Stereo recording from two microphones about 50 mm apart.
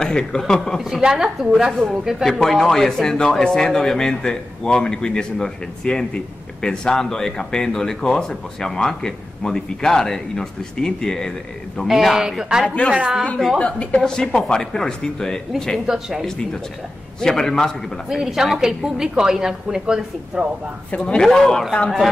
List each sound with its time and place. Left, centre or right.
0.0 s a man's voice: centre
0.7 s a woman's voice: centre
11.9 s a woman's voice: centre
13.6 s a man's voice: left
15.9 s a woman's voice: centre
17.2 s a man's voice: centre
18.0 s a woman's voice: centre
21.0 s a man's voice: centre